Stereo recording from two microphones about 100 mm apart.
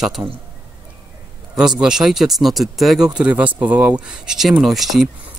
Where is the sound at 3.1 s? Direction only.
15° right (ahead or behind).